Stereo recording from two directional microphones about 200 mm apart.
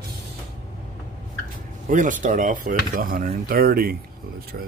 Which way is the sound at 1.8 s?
40° right (ahead or behind).